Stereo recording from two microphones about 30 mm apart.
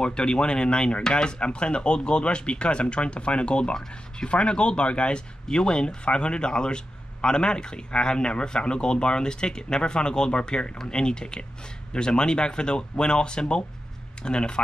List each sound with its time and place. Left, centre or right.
0.0 s a man's voice: left